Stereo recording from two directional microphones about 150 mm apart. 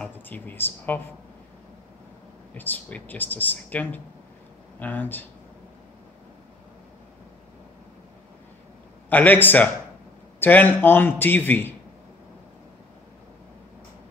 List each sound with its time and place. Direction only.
0.0 s speech: 10° left (ahead or behind)
2.5 s speech: 10° left (ahead or behind)
9.1 s speech: 15° left (ahead or behind)